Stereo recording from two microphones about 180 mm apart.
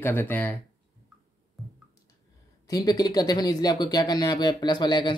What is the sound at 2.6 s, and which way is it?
Speech, 20° left (ahead or behind).